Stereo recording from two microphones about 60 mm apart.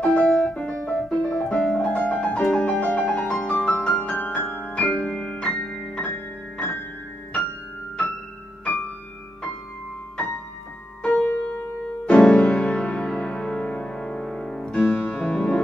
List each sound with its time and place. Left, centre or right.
0.0 s piano: centre
3.7 s music: left
4.9 s piano: left
6.1 s music: left
11.0 s music: centre